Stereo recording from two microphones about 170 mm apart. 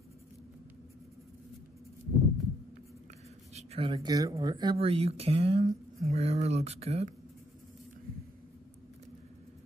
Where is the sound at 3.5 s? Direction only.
35° right (ahead or behind).